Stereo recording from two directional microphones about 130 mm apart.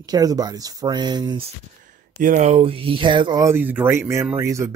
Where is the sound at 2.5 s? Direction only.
45° right (ahead or behind).